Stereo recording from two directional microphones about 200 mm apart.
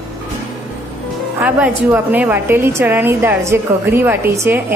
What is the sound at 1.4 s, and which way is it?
A woman's voice, 10° right (ahead or behind).